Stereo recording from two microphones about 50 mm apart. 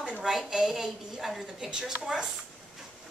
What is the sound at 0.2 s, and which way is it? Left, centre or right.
A woman's voice, centre.